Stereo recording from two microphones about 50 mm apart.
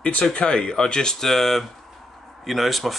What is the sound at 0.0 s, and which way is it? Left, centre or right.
Speech, left.